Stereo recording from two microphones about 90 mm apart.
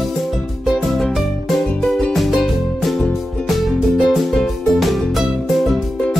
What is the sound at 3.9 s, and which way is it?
Music, 5° left (ahead or behind).